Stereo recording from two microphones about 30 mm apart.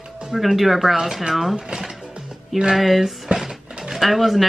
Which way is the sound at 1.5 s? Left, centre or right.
Right.